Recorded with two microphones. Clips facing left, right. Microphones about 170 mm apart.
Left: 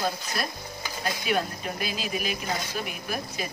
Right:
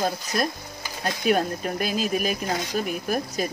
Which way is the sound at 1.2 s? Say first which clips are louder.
Right 7 dB; 45° right (ahead or behind).